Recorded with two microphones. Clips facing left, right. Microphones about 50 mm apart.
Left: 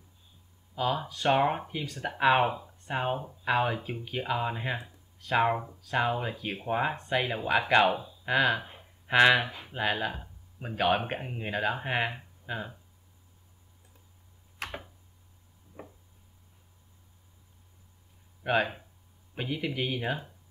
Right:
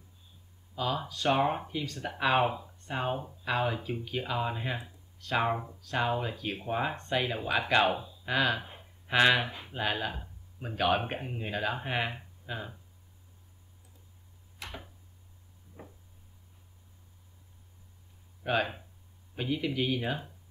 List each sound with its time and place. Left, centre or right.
1.0 s speech: left
3.0 s speech: centre
9.4 s speech: left
9.8 s speech: centre
15.8 s a sound: left
18.4 s speech: centre